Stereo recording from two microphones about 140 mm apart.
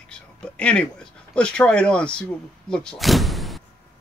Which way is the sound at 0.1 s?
10° left (ahead or behind).